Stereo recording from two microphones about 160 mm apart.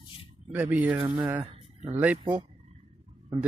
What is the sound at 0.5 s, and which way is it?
Speech, 10° right (ahead or behind).